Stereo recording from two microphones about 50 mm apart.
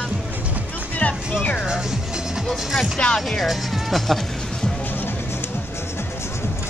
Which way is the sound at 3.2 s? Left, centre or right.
Centre.